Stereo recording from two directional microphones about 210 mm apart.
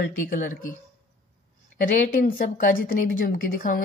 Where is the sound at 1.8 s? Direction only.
40° left (ahead or behind).